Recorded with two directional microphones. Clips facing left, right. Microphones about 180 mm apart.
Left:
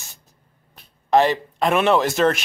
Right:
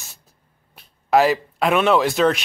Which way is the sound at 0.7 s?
5° right (ahead or behind).